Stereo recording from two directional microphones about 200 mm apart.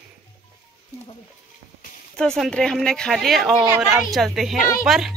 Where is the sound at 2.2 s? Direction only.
Centre (ahead or behind).